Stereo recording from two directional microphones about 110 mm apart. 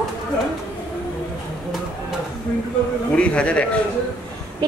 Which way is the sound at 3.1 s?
10° left (ahead or behind).